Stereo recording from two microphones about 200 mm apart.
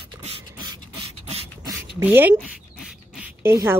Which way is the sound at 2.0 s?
10° right (ahead or behind).